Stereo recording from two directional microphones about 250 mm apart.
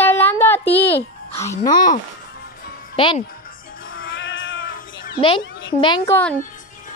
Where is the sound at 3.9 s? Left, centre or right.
Left.